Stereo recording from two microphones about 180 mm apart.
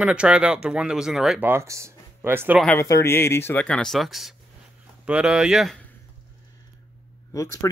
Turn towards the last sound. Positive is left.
turn(degrees=15)  # may be behind; listen again after turning